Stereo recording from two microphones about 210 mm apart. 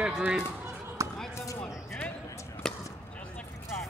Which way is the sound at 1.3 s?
15° left (ahead or behind).